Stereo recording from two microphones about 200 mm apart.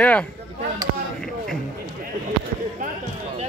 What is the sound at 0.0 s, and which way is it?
Speech, 5° left (ahead or behind).